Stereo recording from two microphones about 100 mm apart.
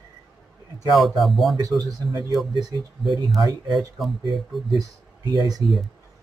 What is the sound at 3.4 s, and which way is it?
Speech, 40° right (ahead or behind).